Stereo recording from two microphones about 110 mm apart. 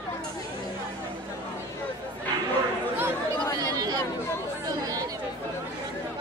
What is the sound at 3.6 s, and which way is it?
Chatter, 35° right (ahead or behind).